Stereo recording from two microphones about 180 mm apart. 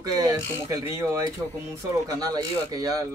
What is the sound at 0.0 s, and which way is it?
Speech, 20° right (ahead or behind).